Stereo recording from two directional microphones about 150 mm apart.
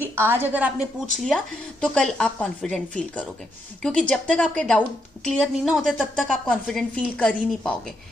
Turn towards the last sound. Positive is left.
turn(degrees=10)  # may be behind; listen again after turning